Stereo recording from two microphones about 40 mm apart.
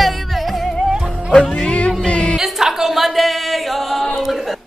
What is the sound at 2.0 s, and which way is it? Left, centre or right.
Music, left.